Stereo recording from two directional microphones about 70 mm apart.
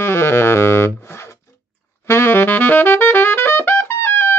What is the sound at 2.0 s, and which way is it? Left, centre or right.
Saxophone, left.